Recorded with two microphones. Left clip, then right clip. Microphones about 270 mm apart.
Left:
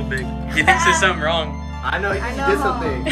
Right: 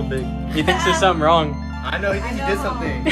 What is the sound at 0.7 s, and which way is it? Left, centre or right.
Speech, centre.